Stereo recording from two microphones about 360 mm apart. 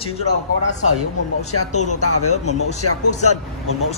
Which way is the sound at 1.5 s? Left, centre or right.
Left.